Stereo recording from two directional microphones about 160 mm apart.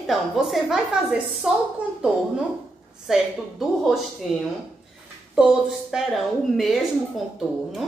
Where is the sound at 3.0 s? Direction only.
Centre (ahead or behind).